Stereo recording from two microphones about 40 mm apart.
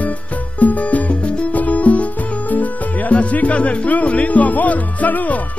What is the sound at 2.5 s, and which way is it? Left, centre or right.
Speech, left.